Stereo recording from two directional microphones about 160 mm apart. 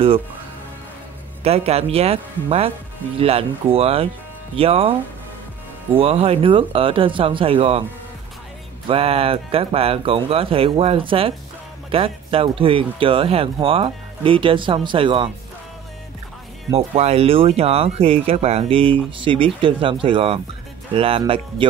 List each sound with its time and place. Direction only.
1.4 s speech: 40° right (ahead or behind)
5.9 s speech: 40° right (ahead or behind)
8.8 s speech: 35° right (ahead or behind)
16.7 s speech: 40° right (ahead or behind)